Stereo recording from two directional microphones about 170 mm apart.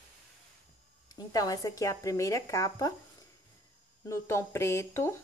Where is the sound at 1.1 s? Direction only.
20° left (ahead or behind).